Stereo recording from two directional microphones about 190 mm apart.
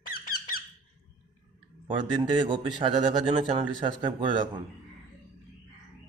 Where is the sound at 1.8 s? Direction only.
25° right (ahead or behind).